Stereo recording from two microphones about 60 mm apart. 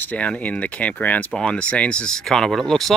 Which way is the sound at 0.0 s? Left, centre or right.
Left.